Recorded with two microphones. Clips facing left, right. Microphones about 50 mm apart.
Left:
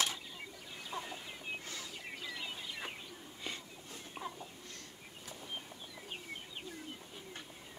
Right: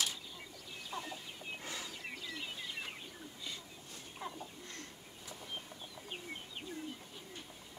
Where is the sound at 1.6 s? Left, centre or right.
Centre.